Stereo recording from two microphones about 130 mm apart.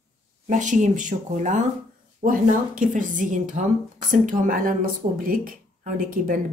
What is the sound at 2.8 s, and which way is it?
A woman's voice, 85° right.